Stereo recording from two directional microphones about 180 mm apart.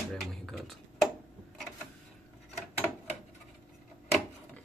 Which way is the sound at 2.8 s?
10° left (ahead or behind).